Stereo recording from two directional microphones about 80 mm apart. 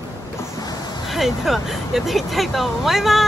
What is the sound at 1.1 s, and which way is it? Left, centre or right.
Speech, centre.